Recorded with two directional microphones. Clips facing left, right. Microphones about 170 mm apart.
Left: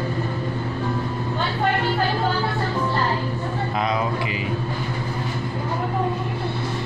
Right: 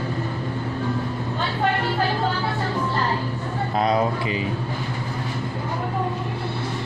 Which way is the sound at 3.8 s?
35° right (ahead or behind).